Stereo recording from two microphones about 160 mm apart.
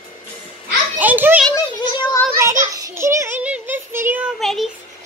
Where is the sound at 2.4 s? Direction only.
15° right (ahead or behind).